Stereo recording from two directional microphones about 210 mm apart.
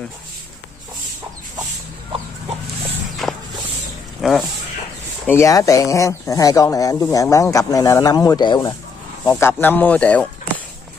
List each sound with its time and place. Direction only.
3.2 s walk: centre (ahead or behind)
4.2 s speech: centre (ahead or behind)
5.2 s speech: 10° left (ahead or behind)